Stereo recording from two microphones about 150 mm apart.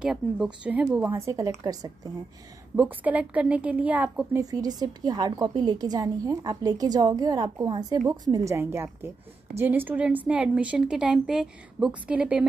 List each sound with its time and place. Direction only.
0.0 s a woman's voice: 5° right (ahead or behind); by 2.1 s 25° right (ahead or behind)
2.7 s a woman's voice: 10° right (ahead or behind)
4.4 s a woman's voice: 25° right (ahead or behind); by 12.4 s 10° right (ahead or behind)